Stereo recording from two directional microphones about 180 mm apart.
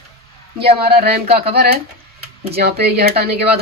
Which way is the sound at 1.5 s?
60° right (ahead or behind).